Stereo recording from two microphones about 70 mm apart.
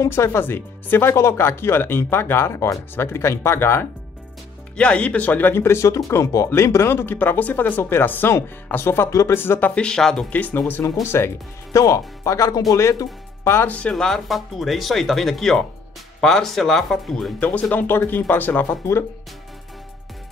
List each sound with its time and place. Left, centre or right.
0.1 s speech: left
4.7 s speech: centre
5.5 s speech: left
9.8 s speech: centre
10.3 s speech: left
10.8 s speech: left
11.8 s speech: left
13.4 s music: left
13.7 s speech: centre
13.9 s speech: centre
17.4 s speech: left